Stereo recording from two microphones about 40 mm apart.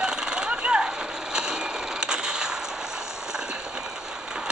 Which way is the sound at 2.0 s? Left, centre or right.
Centre.